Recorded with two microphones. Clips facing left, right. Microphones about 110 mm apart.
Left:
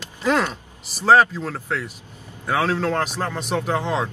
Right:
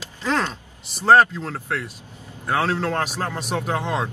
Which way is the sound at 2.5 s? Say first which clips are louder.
Left 1 dB; centre (ahead or behind).